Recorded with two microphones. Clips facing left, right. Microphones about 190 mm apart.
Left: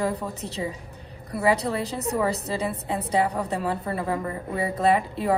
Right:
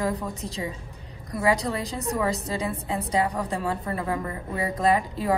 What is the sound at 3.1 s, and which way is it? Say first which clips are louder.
Speech: left 2 dB; 30° left (ahead or behind).